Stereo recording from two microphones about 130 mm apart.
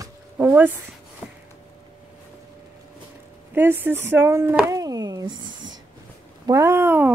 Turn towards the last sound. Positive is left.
turn(degrees=-15)  # may be behind; listen again after turning